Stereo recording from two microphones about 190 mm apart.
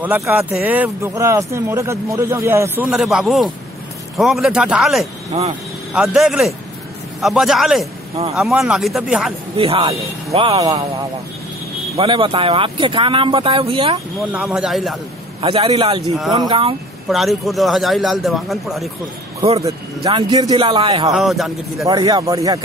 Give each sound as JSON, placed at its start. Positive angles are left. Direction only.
{"t": 0.0, "sound": "speech", "side_deg": -10}
{"t": 5.3, "sound": "speech", "side_deg": -30}
{"t": 5.9, "sound": "speech", "side_deg": 0}
{"t": 9.6, "sound": "speech", "side_deg": -30}
{"t": 12.0, "sound": "speech", "side_deg": -30}
{"t": 14.3, "sound": "speech", "side_deg": -5}
{"t": 15.4, "sound": "speech", "side_deg": -30}
{"t": 17.1, "sound": "speech", "side_deg": 0}
{"t": 19.6, "sound": "speech", "side_deg": -25}
{"t": 21.1, "sound": "speech", "side_deg": 0}
{"t": 21.8, "sound": "speech", "side_deg": -20}